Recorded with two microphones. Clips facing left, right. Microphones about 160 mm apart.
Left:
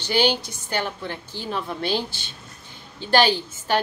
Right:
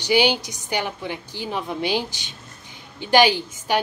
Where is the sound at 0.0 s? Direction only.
15° right (ahead or behind).